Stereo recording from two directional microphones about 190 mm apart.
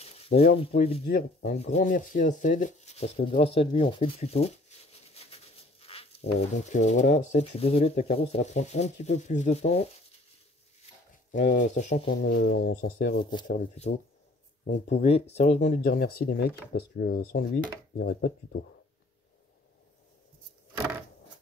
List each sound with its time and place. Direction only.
0.6 s speech: 30° left (ahead or behind)
1.0 s speech: 55° left (ahead or behind)
1.6 s speech: 40° left (ahead or behind)
11.3 s speech: 40° left (ahead or behind)
12.2 s speech: 55° left (ahead or behind)
13.2 s speech: 25° left (ahead or behind)
13.5 s speech: 35° left (ahead or behind); by 18.3 s 55° left (ahead or behind)